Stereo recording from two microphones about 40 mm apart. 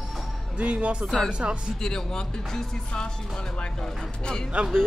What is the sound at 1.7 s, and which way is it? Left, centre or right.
Speech, centre.